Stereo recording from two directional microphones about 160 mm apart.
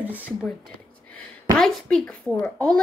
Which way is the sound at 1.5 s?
5° left (ahead or behind).